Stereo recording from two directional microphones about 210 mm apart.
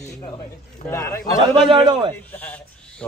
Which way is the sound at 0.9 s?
10° left (ahead or behind).